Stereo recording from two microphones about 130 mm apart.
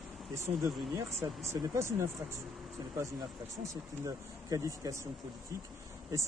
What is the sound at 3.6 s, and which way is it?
Speech, 25° right (ahead or behind).